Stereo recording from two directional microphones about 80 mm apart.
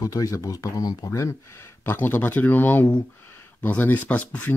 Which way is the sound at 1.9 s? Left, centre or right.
Left.